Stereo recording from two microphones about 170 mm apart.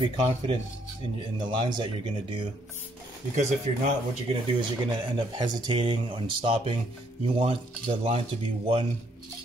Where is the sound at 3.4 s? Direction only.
40° right (ahead or behind).